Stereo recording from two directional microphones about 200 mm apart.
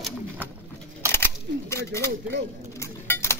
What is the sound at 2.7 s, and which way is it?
Chink, 15° left (ahead or behind).